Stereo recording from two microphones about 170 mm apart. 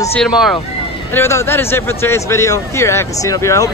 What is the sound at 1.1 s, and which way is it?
A man's voice, 15° left (ahead or behind).